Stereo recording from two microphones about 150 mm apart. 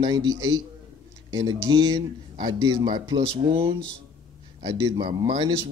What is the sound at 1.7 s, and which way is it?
Speech, 30° right (ahead or behind).